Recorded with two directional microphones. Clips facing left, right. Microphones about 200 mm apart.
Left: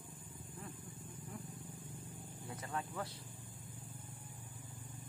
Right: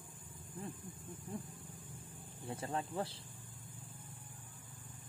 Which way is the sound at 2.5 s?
30° right (ahead or behind).